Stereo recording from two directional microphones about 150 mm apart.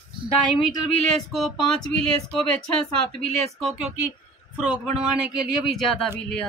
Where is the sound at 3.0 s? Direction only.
Centre (ahead or behind).